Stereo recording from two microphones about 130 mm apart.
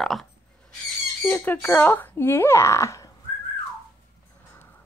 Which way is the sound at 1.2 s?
15° left (ahead or behind).